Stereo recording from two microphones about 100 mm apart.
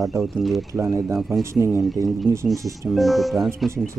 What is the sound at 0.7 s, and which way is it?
Speech, 35° right (ahead or behind).